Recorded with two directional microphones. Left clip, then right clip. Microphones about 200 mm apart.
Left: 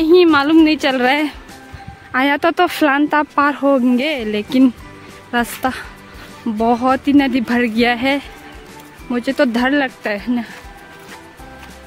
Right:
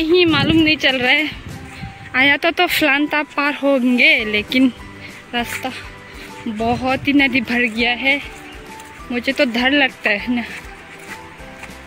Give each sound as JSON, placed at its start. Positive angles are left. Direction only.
{"t": 0.0, "sound": "speech", "side_deg": 25}
{"t": 5.3, "sound": "speech", "side_deg": 30}
{"t": 7.7, "sound": "speech", "side_deg": 35}
{"t": 9.1, "sound": "speech", "side_deg": 20}